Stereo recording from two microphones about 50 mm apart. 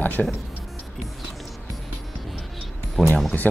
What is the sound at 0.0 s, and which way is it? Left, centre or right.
Speech, left.